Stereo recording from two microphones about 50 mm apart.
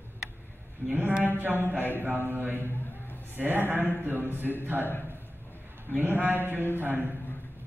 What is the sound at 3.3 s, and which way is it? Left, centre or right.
Mantra, right.